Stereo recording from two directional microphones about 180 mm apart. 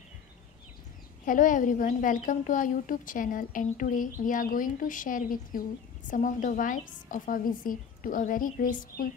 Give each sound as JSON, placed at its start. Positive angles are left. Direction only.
{"t": 1.2, "sound": "a woman's voice", "side_deg": 50}